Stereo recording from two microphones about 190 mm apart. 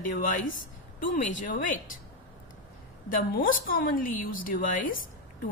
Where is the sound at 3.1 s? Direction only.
45° left (ahead or behind).